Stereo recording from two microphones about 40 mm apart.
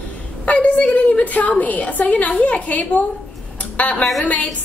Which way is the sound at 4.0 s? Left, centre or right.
Centre.